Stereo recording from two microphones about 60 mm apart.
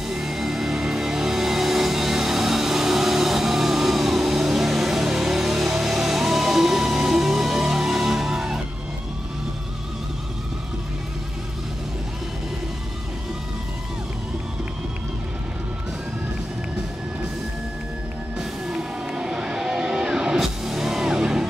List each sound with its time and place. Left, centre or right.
0.1 s music: centre
18.7 s music: centre